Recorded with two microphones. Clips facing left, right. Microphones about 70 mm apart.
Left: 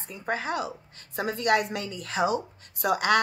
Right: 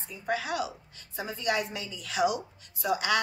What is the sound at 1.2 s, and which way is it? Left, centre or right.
Speech, left.